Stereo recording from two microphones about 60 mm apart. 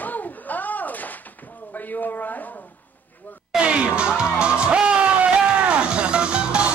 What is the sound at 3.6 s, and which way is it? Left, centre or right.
Music, centre.